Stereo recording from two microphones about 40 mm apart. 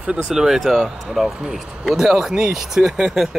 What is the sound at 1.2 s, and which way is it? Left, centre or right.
Speech, centre.